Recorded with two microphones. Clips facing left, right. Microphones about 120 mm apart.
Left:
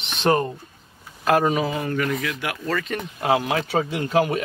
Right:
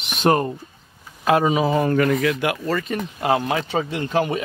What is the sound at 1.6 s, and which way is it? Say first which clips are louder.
Speech: right 6 dB; 40° right (ahead or behind).